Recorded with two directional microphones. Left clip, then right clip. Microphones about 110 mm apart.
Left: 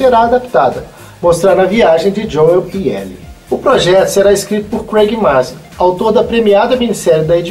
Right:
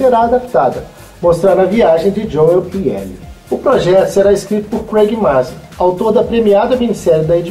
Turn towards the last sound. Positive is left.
turn(degrees=-20)  # may be behind; listen again after turning